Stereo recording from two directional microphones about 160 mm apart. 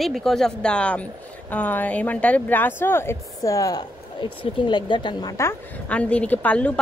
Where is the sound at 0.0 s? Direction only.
Centre (ahead or behind); by 5.3 s 30° left (ahead or behind).